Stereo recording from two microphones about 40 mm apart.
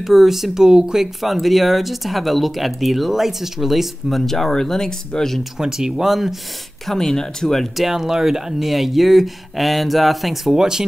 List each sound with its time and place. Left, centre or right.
0.0 s speech: centre
1.2 s speech: centre
4.3 s speech: centre
5.6 s speech: centre
6.9 s speech: centre
7.7 s speech: centre